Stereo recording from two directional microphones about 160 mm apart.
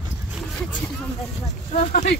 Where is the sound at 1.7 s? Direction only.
50° left (ahead or behind).